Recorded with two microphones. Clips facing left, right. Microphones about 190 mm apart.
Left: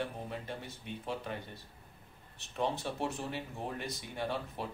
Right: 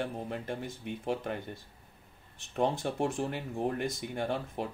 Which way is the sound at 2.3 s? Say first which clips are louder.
Right 5 dB; 50° right (ahead or behind).